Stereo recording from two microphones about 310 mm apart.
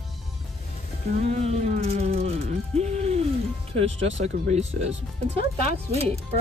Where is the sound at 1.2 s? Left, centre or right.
Right.